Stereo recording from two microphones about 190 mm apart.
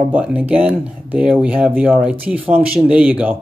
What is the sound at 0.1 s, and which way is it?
Speech, 5° right (ahead or behind).